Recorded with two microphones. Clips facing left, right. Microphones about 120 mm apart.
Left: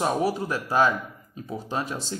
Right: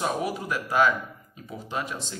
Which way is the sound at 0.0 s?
35° left (ahead or behind).